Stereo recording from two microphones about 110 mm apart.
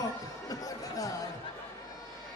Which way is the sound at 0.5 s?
35° left (ahead or behind).